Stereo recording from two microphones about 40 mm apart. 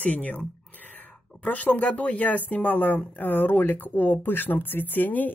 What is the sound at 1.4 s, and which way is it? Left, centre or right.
Speech, left.